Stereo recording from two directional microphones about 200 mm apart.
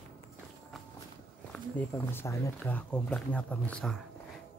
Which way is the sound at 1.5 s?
10° left (ahead or behind).